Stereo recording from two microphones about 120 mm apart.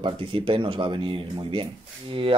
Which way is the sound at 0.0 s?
45° right (ahead or behind).